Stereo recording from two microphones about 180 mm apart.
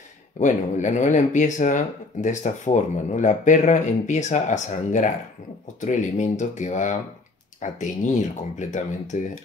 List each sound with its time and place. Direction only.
0.4 s speech: 45° left (ahead or behind)